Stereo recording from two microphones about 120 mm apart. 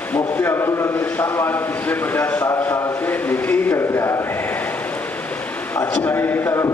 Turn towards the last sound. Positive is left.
turn(degrees=20)  # may be behind; listen again after turning